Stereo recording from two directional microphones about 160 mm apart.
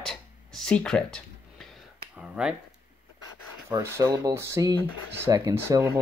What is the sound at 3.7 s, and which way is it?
Speech, 15° right (ahead or behind).